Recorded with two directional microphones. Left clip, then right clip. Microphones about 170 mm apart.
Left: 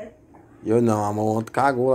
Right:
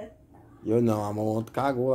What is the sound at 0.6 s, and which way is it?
Speech, 10° left (ahead or behind).